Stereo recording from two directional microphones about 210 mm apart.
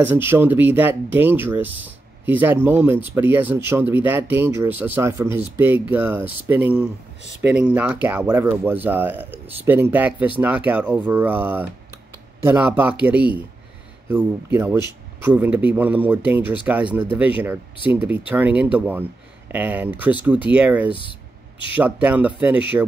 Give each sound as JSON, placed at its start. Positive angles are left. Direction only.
{"t": 0.0, "sound": "speech", "side_deg": -10}
{"t": 20.9, "sound": "a sound", "side_deg": 25}
{"t": 21.7, "sound": "speech", "side_deg": -10}